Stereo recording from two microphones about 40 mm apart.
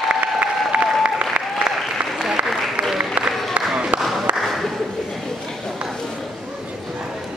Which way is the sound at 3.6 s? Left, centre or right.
Right.